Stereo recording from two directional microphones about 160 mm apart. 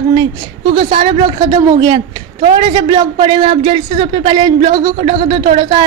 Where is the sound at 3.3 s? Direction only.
30° right (ahead or behind).